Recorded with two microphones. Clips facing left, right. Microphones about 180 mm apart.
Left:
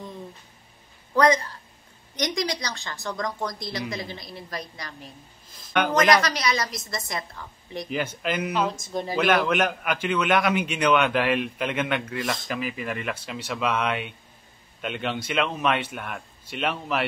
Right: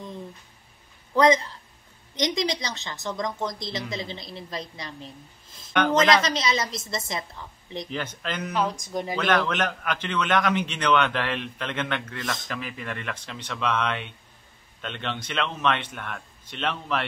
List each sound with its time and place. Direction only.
1.1 s a woman's voice: 20° right (ahead or behind)
7.9 s a man's voice: 10° left (ahead or behind)